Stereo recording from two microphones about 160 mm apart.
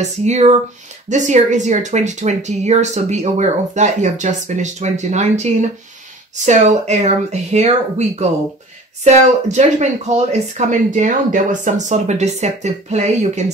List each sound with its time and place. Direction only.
0.0 s speech: 45° right (ahead or behind)
9.0 s speech: 45° right (ahead or behind)